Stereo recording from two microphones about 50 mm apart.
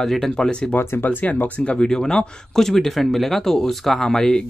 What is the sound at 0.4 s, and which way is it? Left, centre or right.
Speech, centre.